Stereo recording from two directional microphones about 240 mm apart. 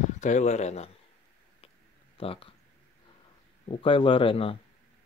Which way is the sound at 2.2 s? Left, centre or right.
Left.